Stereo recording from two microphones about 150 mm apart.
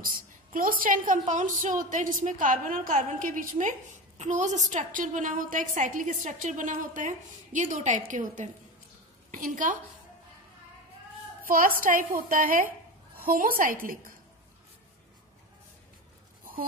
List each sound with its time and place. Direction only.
0.0 s a woman's voice: 70° right (ahead or behind)
11.4 s a woman's voice: 70° right (ahead or behind)